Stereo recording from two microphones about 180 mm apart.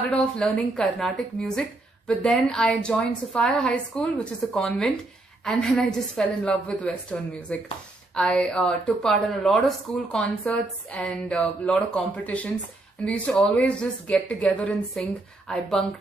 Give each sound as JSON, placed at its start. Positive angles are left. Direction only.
{"t": 0.1, "sound": "a woman's voice", "side_deg": 5}